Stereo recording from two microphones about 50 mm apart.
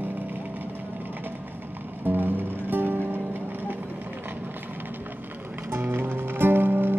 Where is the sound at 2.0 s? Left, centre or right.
Right.